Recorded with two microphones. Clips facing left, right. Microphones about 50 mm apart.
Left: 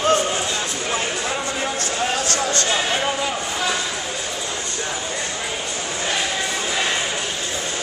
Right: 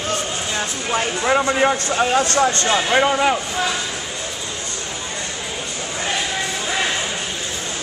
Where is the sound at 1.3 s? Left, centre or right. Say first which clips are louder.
Right 8 dB; right.